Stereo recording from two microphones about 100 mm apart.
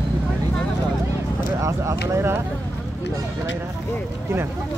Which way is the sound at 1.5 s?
30° right (ahead or behind).